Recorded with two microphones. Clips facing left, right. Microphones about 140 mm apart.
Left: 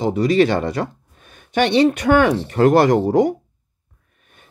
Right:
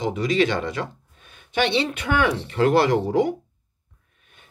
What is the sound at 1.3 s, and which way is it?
Speech, 50° left (ahead or behind).